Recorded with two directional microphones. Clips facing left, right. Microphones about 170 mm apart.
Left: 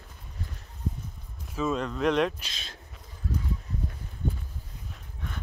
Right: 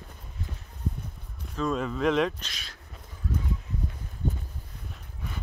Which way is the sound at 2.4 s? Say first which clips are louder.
Even; 25° left (ahead or behind).